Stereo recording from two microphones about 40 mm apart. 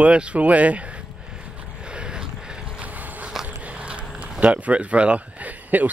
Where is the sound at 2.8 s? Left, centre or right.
Right.